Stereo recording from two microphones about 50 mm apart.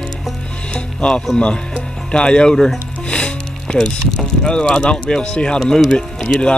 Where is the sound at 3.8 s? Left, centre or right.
Centre.